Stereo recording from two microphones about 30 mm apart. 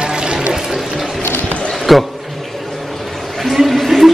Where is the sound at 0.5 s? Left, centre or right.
Centre.